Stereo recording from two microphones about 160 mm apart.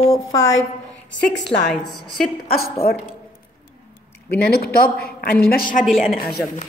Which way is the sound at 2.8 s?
70° left (ahead or behind).